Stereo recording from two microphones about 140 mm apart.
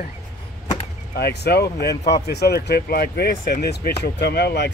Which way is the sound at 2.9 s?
90° left.